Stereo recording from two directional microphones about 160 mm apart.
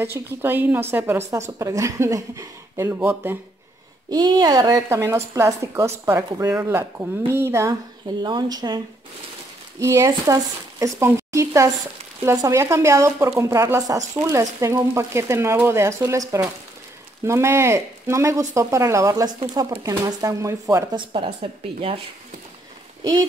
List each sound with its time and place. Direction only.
0.0 s a woman's voice: 15° right (ahead or behind)
4.1 s a woman's voice: 25° right (ahead or behind)
8.2 s a woman's voice: 25° right (ahead or behind)